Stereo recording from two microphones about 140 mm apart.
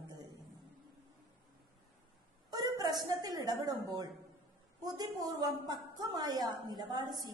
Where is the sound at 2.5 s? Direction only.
30° right (ahead or behind).